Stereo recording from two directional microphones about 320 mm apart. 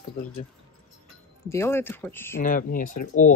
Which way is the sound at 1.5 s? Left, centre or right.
Centre.